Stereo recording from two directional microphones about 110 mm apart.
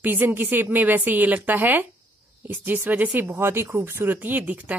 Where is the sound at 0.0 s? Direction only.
20° right (ahead or behind).